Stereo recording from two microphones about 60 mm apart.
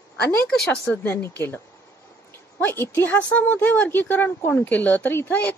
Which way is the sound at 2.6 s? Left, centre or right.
Left.